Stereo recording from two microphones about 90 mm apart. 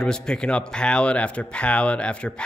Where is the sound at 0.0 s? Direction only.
10° left (ahead or behind).